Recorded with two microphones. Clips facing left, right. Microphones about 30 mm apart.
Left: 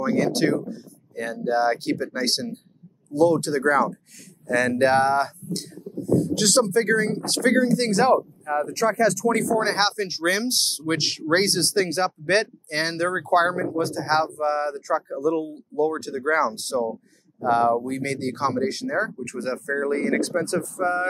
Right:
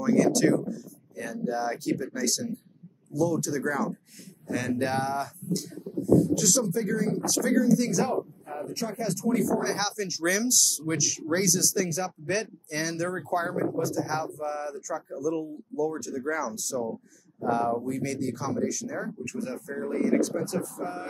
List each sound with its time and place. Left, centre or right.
0.0 s speech: left
6.1 s speech: left